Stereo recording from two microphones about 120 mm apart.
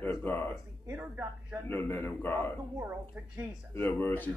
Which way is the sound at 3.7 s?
20° left (ahead or behind).